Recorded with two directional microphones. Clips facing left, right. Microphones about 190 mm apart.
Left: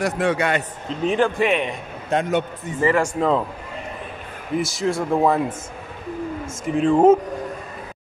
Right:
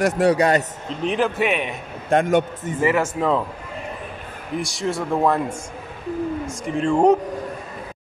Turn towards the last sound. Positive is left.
turn(degrees=0)  # may be behind; listen again after turning